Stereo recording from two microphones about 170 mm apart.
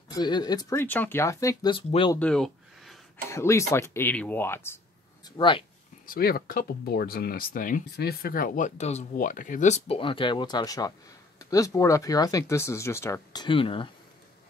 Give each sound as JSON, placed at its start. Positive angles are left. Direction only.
{"t": 0.1, "sound": "speech", "side_deg": 25}
{"t": 1.7, "sound": "speech", "side_deg": 30}
{"t": 2.1, "sound": "a sound", "side_deg": 5}
{"t": 3.3, "sound": "speech", "side_deg": 15}
{"t": 5.4, "sound": "speech", "side_deg": 30}
{"t": 6.0, "sound": "speech", "side_deg": 60}